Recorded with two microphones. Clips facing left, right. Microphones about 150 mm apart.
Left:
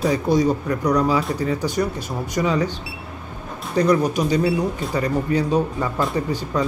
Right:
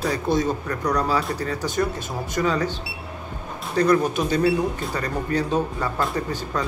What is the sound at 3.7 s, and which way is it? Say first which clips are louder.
Speech: left 1 dB; 15° left (ahead or behind).